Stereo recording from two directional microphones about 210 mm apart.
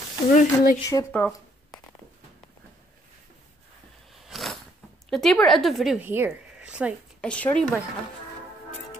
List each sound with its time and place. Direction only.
0.3 s speech: 40° left (ahead or behind)
0.8 s speech: 10° left (ahead or behind)
4.1 s a sound: centre (ahead or behind)
5.1 s a woman's voice: centre (ahead or behind)
7.2 s speech: 5° left (ahead or behind)